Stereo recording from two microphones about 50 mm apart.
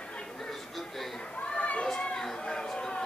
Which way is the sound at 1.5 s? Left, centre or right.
Left.